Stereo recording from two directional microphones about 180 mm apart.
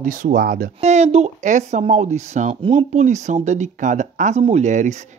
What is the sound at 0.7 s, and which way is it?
Speech, 40° right (ahead or behind).